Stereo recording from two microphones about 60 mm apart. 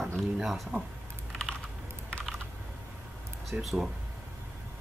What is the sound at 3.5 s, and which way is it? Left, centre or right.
Speech, centre.